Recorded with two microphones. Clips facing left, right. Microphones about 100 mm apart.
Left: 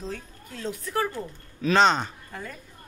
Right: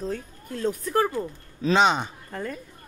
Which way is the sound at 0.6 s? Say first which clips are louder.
Right 5 dB; 40° right (ahead or behind).